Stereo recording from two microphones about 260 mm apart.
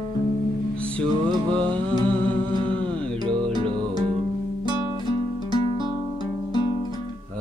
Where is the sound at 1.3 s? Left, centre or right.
Centre.